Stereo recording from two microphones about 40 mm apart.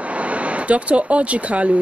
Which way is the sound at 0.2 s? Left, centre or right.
Right.